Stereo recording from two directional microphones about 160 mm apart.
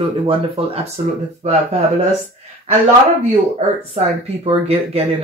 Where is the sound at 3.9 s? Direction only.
40° right (ahead or behind).